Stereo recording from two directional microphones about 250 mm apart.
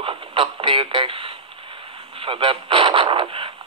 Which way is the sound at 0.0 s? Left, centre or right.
Right.